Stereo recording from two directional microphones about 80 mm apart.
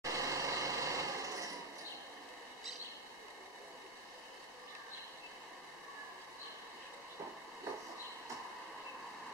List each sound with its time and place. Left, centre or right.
0.0 s vehicle: right